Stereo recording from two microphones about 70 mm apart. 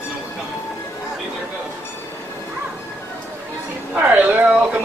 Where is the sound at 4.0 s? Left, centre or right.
Right.